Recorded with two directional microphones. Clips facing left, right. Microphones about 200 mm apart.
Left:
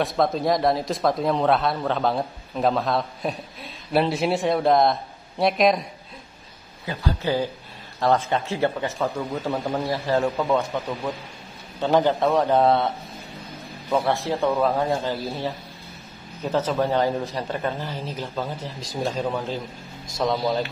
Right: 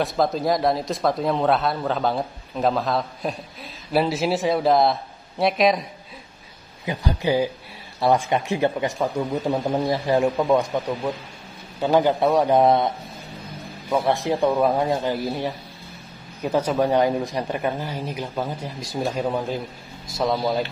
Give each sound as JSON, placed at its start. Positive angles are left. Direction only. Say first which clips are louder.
{"t": 0.0, "sound": "speech", "louder": "even", "side_deg": 0}
{"t": 6.9, "sound": "speech", "louder": "right 2 dB", "side_deg": -15}